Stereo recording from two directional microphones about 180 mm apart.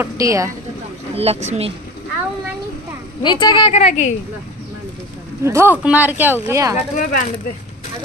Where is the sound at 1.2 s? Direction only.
35° right (ahead or behind).